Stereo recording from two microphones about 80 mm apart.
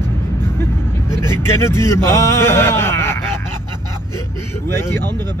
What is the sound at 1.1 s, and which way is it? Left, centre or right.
A man's voice, left.